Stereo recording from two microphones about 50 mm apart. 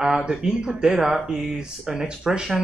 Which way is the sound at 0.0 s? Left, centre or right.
Centre.